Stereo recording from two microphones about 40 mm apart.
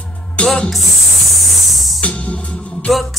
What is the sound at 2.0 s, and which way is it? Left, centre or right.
Music, left.